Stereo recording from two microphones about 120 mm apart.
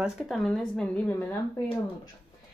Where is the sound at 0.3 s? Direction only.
5° left (ahead or behind).